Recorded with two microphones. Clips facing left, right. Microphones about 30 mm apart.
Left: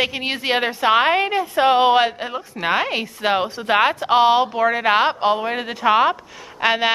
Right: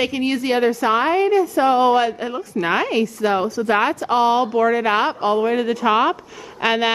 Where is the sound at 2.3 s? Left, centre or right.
Centre.